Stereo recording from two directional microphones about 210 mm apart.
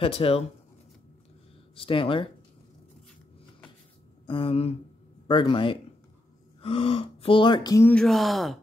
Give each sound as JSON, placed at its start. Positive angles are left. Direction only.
{"t": 0.0, "sound": "speech", "side_deg": 25}
{"t": 1.8, "sound": "speech", "side_deg": 25}
{"t": 4.3, "sound": "speech", "side_deg": 25}